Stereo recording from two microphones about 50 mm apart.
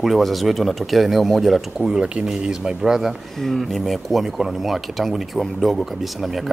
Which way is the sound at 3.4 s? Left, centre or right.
Centre.